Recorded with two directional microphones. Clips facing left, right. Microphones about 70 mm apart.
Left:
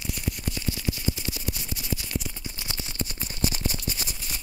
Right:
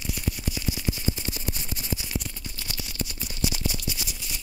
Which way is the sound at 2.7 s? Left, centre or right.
Left.